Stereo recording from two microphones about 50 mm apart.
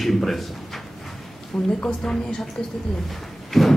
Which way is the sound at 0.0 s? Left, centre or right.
Centre.